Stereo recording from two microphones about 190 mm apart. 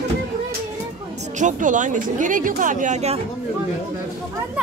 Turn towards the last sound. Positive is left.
turn(degrees=-35)  # may be behind; listen again after turning